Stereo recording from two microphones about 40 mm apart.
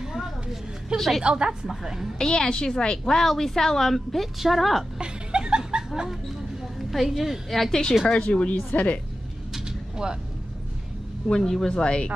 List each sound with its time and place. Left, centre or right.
0.0 s a sound: centre
0.9 s a woman's voice: centre
1.2 s a woman's voice: right
1.7 s a woman's voice: centre
2.1 s a woman's voice: centre
3.2 s a woman's voice: centre
4.9 s chuckle: right
6.9 s a woman's voice: centre
8.1 s speech: left
8.5 s a woman's voice: left
9.5 s a sound: centre
11.2 s a woman's voice: centre